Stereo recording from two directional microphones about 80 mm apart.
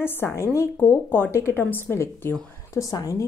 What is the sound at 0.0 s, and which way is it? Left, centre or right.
A woman's voice, left.